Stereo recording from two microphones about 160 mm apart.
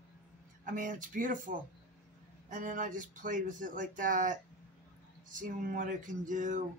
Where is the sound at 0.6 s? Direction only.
55° right (ahead or behind).